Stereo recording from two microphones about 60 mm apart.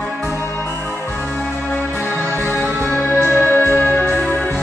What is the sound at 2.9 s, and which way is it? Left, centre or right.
Music, left.